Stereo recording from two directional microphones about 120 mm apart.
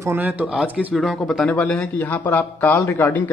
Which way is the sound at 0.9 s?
Centre (ahead or behind).